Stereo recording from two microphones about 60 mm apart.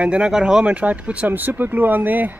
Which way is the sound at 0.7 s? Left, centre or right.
Right.